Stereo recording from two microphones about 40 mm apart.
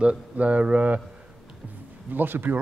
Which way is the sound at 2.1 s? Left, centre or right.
Right.